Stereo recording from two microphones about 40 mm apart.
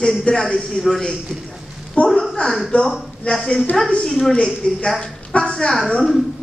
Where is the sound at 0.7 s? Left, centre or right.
Centre.